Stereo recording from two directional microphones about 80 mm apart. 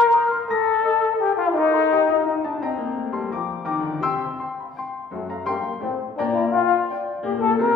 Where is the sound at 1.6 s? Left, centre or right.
Centre.